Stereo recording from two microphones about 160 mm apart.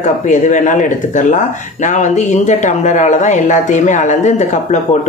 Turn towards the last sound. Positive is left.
turn(degrees=45)  # may be behind; listen again after turning